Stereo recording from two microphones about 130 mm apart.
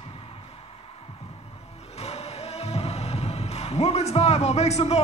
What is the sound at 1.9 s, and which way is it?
Music, 55° left (ahead or behind).